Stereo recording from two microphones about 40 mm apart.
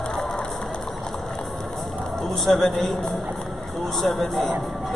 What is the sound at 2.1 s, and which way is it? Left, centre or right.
A man's voice, centre.